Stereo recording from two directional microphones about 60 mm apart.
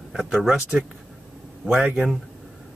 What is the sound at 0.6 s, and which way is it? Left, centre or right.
Speech, centre.